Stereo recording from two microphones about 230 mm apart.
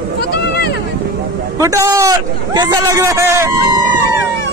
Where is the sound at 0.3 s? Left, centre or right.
Left.